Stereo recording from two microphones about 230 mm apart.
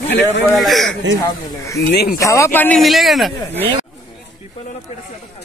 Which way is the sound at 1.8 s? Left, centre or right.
Left.